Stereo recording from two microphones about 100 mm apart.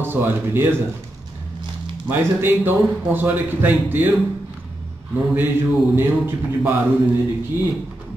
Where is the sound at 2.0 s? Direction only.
20° right (ahead or behind).